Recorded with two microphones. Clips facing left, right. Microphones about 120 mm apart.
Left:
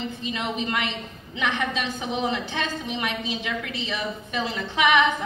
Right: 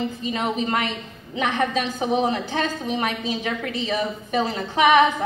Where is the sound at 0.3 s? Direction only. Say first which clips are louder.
Right 4 dB; 40° right (ahead or behind).